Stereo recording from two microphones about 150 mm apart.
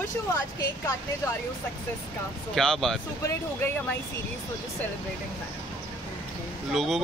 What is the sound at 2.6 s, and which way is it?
Speech, centre (ahead or behind).